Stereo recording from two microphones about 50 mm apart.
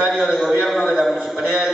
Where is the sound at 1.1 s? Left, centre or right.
Right.